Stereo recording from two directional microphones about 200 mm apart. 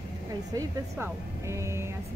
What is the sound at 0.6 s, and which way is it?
Speech, 10° right (ahead or behind).